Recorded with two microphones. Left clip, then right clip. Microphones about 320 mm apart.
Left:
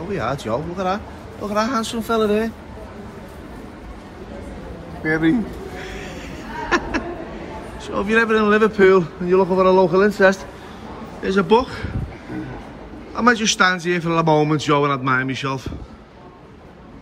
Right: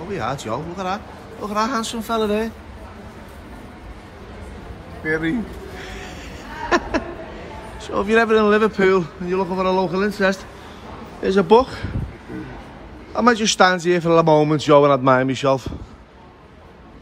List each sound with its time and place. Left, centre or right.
0.1 s a man's voice: centre
5.0 s speech: centre
5.8 s a sound: centre
7.8 s a man's voice: centre
13.1 s a man's voice: centre